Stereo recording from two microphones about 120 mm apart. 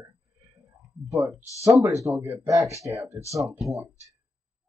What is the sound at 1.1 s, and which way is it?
Speech, 20° right (ahead or behind).